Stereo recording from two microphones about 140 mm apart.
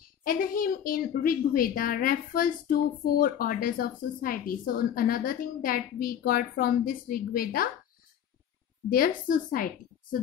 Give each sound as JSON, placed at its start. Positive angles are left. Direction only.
{"t": 0.0, "sound": "a woman's voice", "side_deg": 90}
{"t": 8.9, "sound": "a woman's voice", "side_deg": 90}